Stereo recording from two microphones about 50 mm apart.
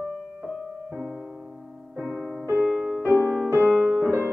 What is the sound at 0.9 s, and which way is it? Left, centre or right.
Music, centre.